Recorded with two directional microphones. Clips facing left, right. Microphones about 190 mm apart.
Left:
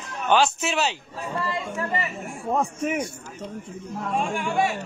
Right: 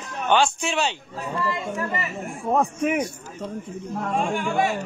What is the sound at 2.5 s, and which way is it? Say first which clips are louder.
Speech: right 3 dB; 60° right (ahead or behind).